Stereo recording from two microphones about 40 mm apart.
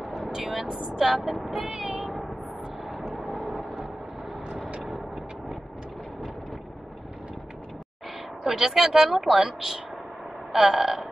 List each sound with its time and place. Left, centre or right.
0.6 s speech: centre
1.7 s child singing: centre
2.9 s vehicle: centre
4.6 s vehicle: right
8.5 s speech: centre